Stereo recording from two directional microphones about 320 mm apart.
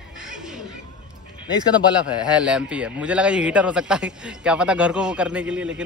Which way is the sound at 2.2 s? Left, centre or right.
Centre.